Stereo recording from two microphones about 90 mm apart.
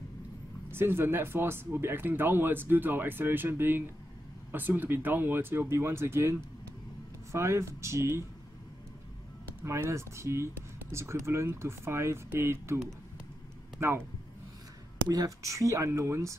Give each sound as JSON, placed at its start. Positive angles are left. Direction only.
{"t": 0.7, "sound": "speech", "side_deg": -25}
{"t": 7.3, "sound": "speech", "side_deg": -30}
{"t": 9.6, "sound": "speech", "side_deg": -30}
{"t": 13.7, "sound": "speech", "side_deg": -25}
{"t": 15.0, "sound": "speech", "side_deg": -40}